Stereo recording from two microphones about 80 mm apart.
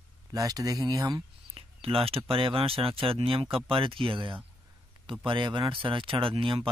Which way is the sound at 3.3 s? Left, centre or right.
Right.